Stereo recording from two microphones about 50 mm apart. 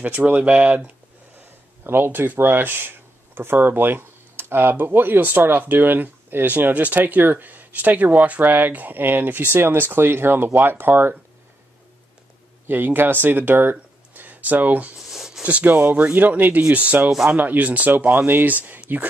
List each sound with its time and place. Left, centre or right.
0.3 s speech: right
1.9 s speech: right
12.6 s speech: right
15.0 s a sound: centre
15.6 s speech: right